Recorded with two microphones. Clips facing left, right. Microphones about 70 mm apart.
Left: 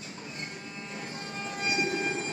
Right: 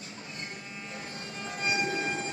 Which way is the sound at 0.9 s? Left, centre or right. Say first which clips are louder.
Left 3 dB; left.